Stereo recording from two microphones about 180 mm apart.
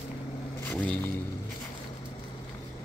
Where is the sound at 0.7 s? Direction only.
5° left (ahead or behind).